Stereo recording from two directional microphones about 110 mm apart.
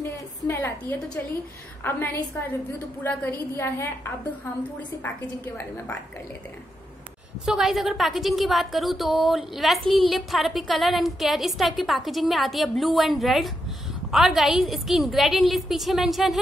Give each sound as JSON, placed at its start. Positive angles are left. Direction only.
{"t": 0.5, "sound": "a woman's voice", "side_deg": 20}
{"t": 7.4, "sound": "a woman's voice", "side_deg": -5}